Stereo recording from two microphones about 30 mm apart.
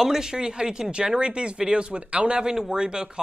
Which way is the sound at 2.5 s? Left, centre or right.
Right.